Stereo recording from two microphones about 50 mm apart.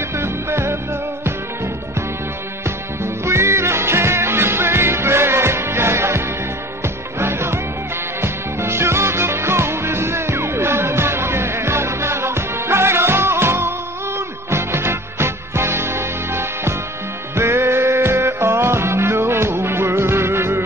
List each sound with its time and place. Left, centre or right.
0.1 s music: right
3.0 s music: right